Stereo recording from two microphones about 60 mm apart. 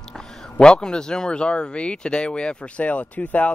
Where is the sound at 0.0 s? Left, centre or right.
Centre.